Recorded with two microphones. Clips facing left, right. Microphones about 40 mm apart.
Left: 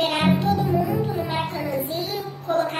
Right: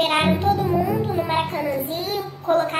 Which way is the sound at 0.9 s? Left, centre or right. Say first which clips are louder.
Right 2 dB; right.